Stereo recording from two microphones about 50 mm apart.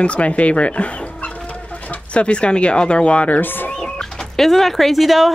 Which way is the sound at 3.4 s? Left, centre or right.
Left.